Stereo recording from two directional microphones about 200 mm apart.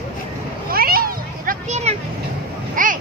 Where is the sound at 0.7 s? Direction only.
50° right (ahead or behind).